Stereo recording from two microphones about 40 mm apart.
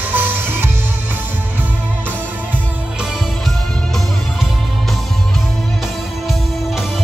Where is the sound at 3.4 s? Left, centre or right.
Centre.